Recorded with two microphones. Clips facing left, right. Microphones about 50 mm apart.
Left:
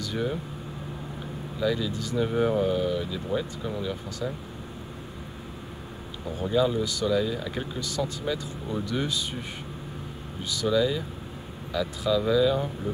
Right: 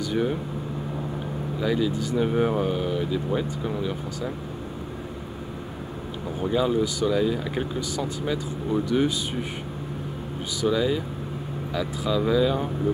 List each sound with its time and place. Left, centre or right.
0.0 s speech: centre
1.6 s speech: centre
6.4 s speech: centre
10.6 s speech: centre